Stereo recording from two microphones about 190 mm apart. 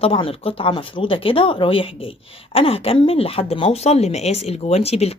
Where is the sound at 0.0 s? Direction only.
30° left (ahead or behind).